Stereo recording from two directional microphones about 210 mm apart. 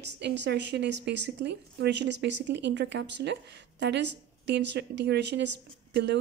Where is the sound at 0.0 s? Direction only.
55° right (ahead or behind).